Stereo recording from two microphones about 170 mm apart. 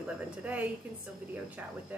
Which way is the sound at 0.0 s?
10° right (ahead or behind).